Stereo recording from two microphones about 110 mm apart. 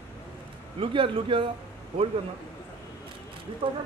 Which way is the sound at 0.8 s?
50° right (ahead or behind).